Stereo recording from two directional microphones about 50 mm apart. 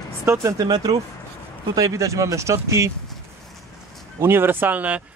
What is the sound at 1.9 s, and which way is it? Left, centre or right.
Speech, right.